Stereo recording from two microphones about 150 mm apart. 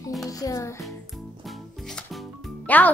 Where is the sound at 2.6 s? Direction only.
10° left (ahead or behind).